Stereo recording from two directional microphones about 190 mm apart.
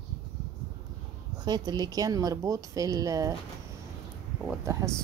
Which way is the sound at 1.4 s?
20° right (ahead or behind).